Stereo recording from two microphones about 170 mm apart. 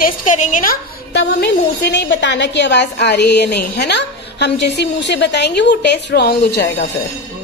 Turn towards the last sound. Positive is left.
turn(degrees=70)  # may be behind; listen again after turning